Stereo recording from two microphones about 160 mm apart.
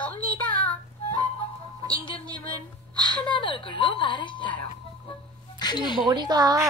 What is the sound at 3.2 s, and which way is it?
A woman's voice, 30° left (ahead or behind).